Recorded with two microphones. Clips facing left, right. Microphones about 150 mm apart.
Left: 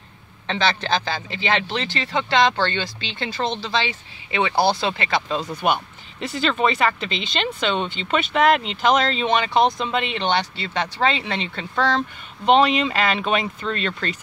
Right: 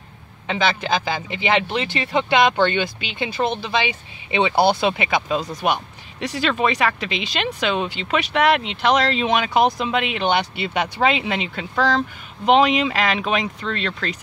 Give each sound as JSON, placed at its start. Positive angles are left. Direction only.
{"t": 0.5, "sound": "speech", "side_deg": -10}
{"t": 5.4, "sound": "speech", "side_deg": 0}